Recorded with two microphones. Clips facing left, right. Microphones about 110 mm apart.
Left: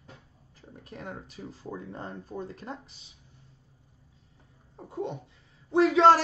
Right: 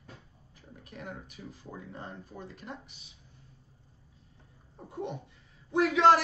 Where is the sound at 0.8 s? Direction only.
35° left (ahead or behind).